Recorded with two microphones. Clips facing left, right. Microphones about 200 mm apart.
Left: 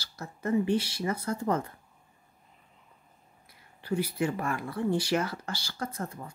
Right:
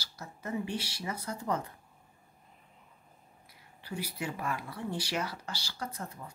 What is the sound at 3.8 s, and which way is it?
Speech, 55° left (ahead or behind).